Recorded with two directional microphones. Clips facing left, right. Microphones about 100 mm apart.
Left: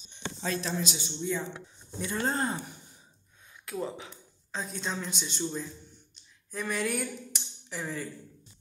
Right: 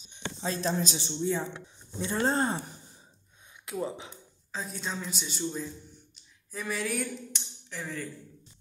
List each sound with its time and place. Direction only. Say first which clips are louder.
0.6 s a man's voice: right 3 dB; 40° right (ahead or behind)
3.6 s speech: right 1 dB; 20° right (ahead or behind)
4.5 s a woman's voice: left 1 dB; centre (ahead or behind)
6.1 s a sound: left 2 dB; centre (ahead or behind)